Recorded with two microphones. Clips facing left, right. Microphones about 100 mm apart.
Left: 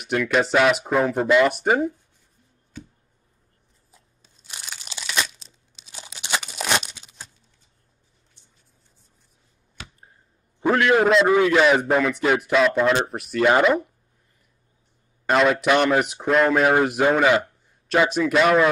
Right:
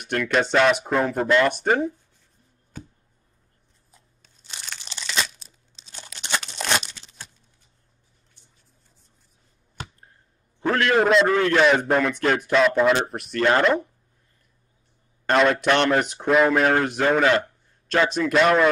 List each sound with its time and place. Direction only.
0.0 s speech: 5° left (ahead or behind)
2.7 s a sound: 45° right (ahead or behind)
4.5 s crunch: 5° left (ahead or behind)
6.1 s crumpling: 10° left (ahead or behind)
10.6 s a sound: 10° left (ahead or behind)
11.0 s speech: centre (ahead or behind)
15.2 s speech: centre (ahead or behind)
16.7 s a man's voice: 10° left (ahead or behind)